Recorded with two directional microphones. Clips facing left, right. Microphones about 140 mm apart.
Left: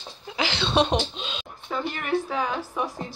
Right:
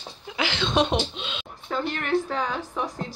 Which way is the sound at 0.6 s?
10° right (ahead or behind).